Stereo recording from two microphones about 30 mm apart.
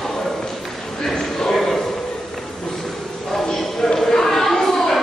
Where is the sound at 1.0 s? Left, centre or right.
Centre.